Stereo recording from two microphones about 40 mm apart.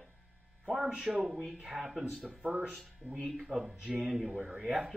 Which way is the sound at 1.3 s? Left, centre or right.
Centre.